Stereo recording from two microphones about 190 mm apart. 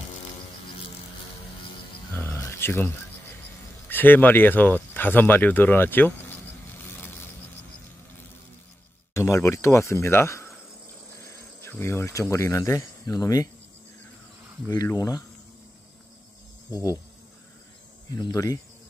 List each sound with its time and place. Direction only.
2.1 s a sound: 10° left (ahead or behind)
3.9 s speech: 10° left (ahead or behind)
9.1 s speech: 15° left (ahead or behind)
14.7 s speech: 20° left (ahead or behind)
16.7 s speech: 20° left (ahead or behind)
18.1 s speech: 20° left (ahead or behind)